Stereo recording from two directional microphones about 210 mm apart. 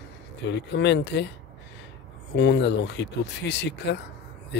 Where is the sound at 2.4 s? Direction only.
55° left (ahead or behind).